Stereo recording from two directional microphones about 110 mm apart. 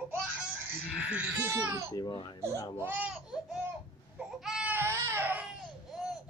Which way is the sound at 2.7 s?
15° right (ahead or behind).